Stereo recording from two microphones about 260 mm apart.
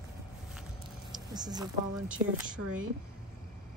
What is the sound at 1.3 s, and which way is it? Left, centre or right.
Speech, centre.